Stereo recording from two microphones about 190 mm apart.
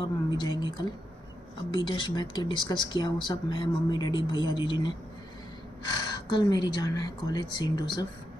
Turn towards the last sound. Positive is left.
turn(degrees=20)  # may be behind; listen again after turning